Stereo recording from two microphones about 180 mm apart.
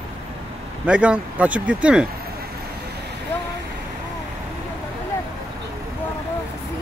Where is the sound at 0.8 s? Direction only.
5° right (ahead or behind).